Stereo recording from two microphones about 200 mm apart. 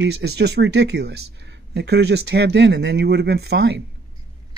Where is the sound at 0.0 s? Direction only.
55° right (ahead or behind).